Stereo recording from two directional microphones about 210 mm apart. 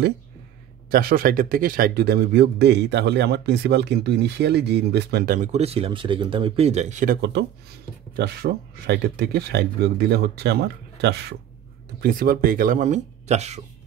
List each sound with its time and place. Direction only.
0.8 s speech: 45° right (ahead or behind)
8.2 s speech: 50° right (ahead or behind); by 13.6 s 30° right (ahead or behind)